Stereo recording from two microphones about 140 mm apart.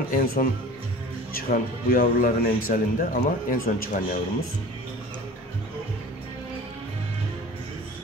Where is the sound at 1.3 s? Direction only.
90° left; by 4.2 s 75° left (ahead or behind).